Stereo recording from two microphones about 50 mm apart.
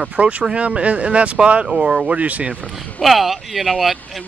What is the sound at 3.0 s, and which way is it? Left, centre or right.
Speech, centre.